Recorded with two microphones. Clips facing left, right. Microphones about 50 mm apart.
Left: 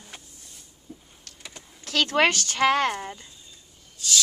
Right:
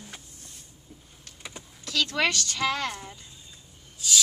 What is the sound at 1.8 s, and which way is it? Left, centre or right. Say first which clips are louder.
Speech: left 5 dB; left.